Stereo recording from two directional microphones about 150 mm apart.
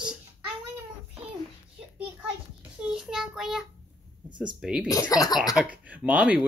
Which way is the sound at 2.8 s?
5° right (ahead or behind).